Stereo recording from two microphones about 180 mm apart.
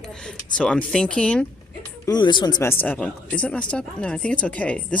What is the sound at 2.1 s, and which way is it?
Speech, 25° left (ahead or behind).